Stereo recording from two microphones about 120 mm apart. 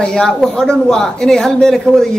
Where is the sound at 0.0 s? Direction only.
5° left (ahead or behind).